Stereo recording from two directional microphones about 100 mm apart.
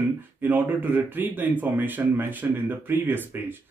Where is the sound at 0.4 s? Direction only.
20° right (ahead or behind).